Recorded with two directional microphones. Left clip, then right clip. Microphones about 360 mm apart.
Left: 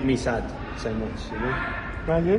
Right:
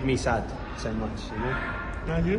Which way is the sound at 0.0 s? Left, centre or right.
Centre.